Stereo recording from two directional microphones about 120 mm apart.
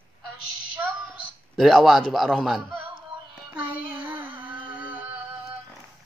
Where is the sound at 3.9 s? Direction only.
15° right (ahead or behind).